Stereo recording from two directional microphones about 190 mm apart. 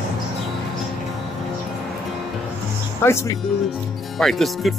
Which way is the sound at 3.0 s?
15° left (ahead or behind).